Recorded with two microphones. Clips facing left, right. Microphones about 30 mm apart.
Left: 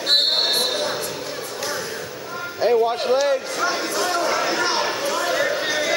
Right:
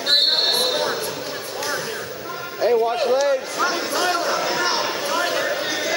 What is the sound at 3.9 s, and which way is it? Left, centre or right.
Speech, centre.